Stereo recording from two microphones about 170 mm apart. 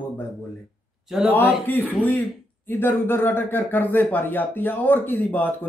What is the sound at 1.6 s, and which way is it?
Speech, 10° left (ahead or behind).